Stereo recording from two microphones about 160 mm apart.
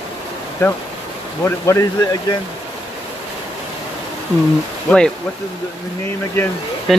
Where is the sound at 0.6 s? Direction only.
15° left (ahead or behind).